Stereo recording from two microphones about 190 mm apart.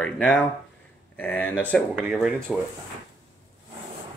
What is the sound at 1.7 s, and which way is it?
Speech, 5° right (ahead or behind).